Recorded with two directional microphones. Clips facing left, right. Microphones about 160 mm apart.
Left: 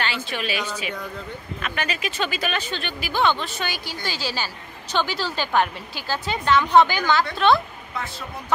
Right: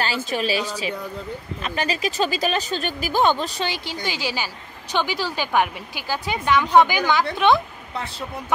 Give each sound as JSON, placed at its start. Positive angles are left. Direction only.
{"t": 0.0, "sound": "a woman's voice", "side_deg": -40}